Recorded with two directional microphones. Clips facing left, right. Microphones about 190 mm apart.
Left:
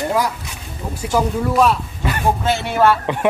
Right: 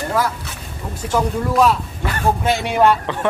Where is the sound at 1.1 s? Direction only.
Centre (ahead or behind).